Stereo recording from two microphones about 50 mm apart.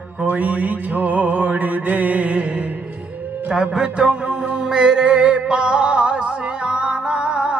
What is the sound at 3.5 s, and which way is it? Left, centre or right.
Music, centre.